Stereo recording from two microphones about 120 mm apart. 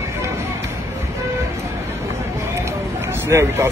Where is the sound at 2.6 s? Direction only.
20° right (ahead or behind).